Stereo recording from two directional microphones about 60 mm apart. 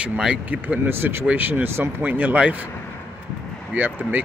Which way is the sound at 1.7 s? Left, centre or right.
Right.